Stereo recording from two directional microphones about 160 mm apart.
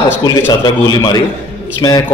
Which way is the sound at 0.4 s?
25° left (ahead or behind).